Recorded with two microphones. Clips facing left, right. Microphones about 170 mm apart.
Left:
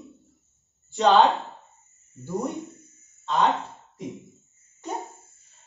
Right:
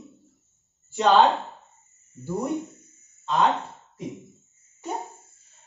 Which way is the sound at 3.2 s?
Centre (ahead or behind).